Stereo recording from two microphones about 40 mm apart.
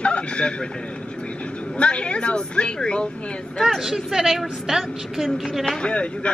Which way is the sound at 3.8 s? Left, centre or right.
Centre.